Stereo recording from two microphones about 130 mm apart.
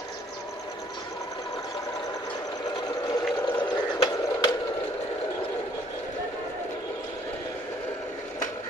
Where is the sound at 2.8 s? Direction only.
30° left (ahead or behind).